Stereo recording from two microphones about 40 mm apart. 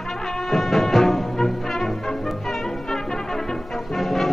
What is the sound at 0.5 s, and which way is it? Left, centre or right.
Music, centre.